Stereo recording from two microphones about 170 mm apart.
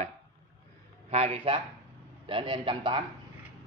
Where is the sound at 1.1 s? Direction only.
35° right (ahead or behind).